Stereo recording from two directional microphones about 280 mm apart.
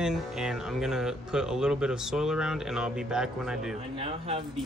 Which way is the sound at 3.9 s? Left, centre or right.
Right.